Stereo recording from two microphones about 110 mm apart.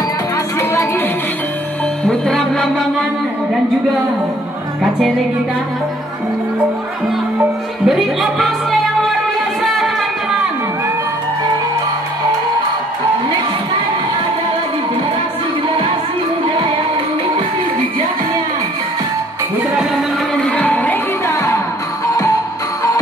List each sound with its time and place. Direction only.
2.0 s music: 5° left (ahead or behind)
7.8 s speech: centre (ahead or behind)
9.6 s music: centre (ahead or behind)
20.4 s music: 10° left (ahead or behind)